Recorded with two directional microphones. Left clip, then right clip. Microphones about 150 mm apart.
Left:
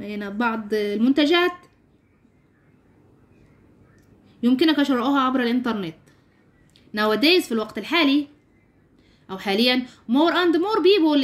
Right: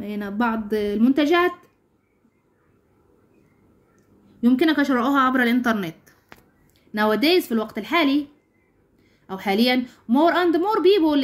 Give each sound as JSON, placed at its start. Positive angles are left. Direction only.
{"t": 0.0, "sound": "a woman's voice", "side_deg": 5}
{"t": 4.4, "sound": "a woman's voice", "side_deg": 5}
{"t": 9.3, "sound": "a woman's voice", "side_deg": 5}